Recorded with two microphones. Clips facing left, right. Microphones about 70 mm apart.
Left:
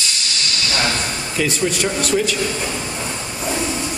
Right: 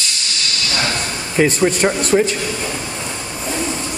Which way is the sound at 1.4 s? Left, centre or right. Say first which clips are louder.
Right 6 dB; right.